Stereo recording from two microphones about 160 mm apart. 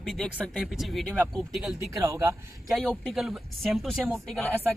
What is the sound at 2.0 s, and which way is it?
Speech, 20° right (ahead or behind).